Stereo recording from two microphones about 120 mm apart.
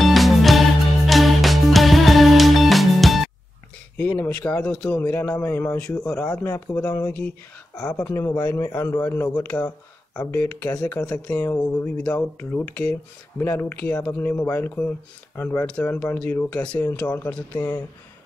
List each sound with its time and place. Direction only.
0.0 s music: centre (ahead or behind)
4.2 s speech: 10° left (ahead or behind)
6.4 s speech: 15° left (ahead or behind)
8.1 s a man's voice: 20° left (ahead or behind)